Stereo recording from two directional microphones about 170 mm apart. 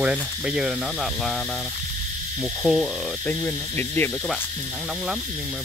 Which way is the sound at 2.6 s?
Centre (ahead or behind).